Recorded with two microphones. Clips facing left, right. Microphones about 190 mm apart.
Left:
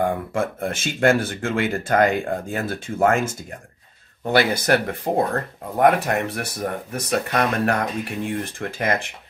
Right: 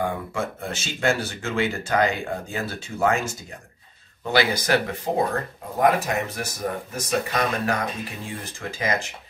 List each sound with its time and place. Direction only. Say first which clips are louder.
0.0 s speech: left 4 dB; 50° left (ahead or behind)